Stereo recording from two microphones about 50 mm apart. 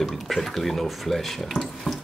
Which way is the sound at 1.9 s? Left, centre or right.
Centre.